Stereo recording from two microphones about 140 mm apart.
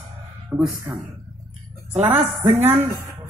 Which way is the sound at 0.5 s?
10° right (ahead or behind).